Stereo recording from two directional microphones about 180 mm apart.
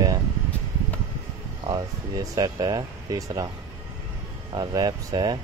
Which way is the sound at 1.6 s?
20° right (ahead or behind).